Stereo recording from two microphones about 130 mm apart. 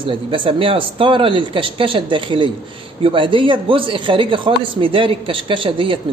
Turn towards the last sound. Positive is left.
turn(degrees=-40)  # may be behind; listen again after turning